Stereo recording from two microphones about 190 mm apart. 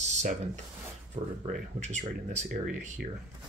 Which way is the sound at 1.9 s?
35° right (ahead or behind).